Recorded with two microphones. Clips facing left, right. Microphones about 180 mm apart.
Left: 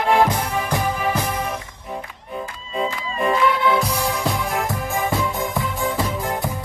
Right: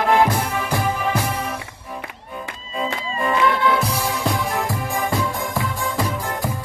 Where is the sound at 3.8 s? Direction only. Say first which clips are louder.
Even; centre (ahead or behind).